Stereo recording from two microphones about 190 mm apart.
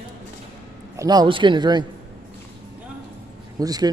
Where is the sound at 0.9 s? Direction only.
20° right (ahead or behind).